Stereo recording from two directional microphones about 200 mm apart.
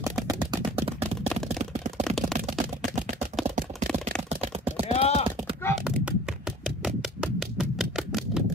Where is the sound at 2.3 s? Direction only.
Centre (ahead or behind).